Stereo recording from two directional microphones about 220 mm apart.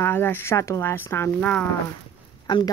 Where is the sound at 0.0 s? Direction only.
10° left (ahead or behind).